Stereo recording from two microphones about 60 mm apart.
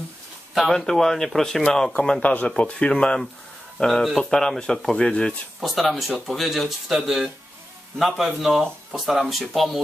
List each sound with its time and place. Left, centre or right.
0.6 s speech: centre
3.7 s speech: centre
5.6 s speech: centre